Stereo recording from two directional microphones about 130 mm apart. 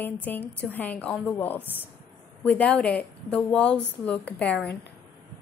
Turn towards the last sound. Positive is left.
turn(degrees=10)  # may be behind; listen again after turning